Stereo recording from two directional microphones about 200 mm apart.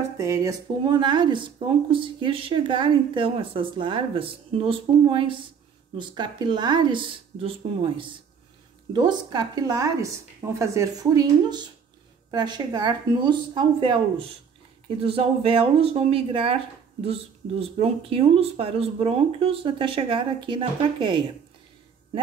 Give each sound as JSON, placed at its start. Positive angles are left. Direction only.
{"t": 0.2, "sound": "speech", "side_deg": -15}